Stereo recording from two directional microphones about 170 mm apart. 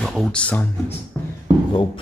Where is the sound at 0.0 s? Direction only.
Centre (ahead or behind).